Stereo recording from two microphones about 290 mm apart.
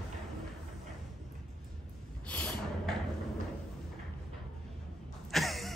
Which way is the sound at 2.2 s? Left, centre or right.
Centre.